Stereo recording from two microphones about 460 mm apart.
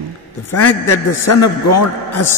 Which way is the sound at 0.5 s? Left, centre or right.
Left.